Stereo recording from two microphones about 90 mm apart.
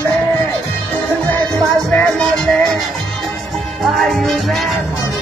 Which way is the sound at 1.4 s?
40° right (ahead or behind).